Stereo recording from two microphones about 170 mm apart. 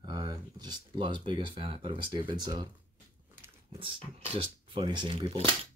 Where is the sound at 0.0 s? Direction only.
25° right (ahead or behind).